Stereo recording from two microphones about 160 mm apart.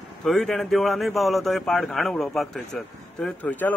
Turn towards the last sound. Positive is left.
turn(degrees=10)  # may be behind; listen again after turning